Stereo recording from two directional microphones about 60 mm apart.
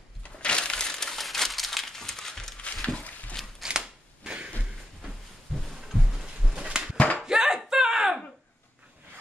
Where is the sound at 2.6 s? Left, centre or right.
Centre.